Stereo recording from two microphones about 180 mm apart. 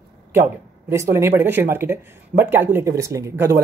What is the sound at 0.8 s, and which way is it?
Speech, 15° right (ahead or behind).